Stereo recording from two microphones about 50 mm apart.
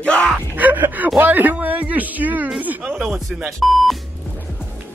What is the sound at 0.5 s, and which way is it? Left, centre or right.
Speech, right.